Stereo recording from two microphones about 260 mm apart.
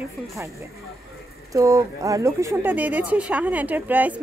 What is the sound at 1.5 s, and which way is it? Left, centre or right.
Speech, centre.